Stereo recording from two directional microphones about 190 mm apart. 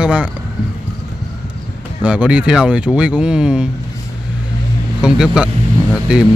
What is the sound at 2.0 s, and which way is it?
Speech, 5° right (ahead or behind).